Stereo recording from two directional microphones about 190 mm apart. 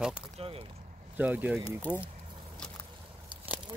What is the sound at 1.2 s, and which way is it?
Speech, 10° right (ahead or behind).